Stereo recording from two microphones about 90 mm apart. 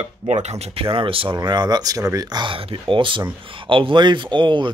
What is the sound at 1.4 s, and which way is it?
Speech, 50° right (ahead or behind).